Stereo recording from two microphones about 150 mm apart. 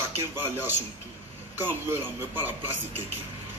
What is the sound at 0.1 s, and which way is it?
Speech, 15° right (ahead or behind).